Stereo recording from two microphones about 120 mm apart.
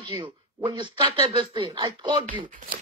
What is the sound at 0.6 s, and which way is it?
Speech, 40° right (ahead or behind).